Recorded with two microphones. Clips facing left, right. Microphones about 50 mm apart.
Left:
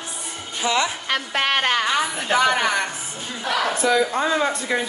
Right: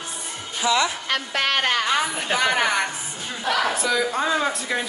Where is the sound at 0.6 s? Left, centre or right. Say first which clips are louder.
Right 1 dB; left.